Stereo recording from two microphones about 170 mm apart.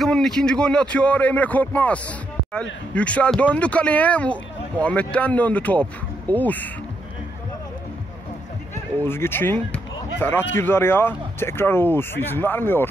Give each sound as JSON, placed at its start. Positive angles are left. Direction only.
{"t": 0.0, "sound": "speech", "side_deg": 5}
{"t": 9.0, "sound": "speech", "side_deg": 15}